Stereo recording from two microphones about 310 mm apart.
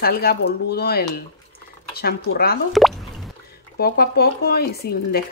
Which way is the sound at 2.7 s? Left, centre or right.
Centre.